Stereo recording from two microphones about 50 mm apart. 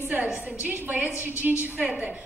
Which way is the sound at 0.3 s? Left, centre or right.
Right.